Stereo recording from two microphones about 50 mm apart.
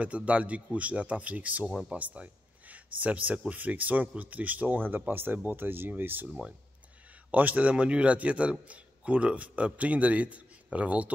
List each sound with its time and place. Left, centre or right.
0.0 s a man's voice: right
6.2 s speech: centre
7.2 s a man's voice: right